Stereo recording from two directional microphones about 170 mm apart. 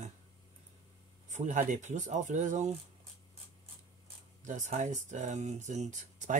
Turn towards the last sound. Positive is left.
turn(degrees=-45)  # may be behind; listen again after turning